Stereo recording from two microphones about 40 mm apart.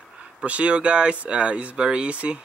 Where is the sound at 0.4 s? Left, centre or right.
Right.